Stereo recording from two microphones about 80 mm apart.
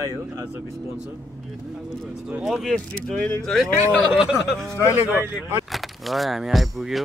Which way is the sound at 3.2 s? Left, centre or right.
Centre.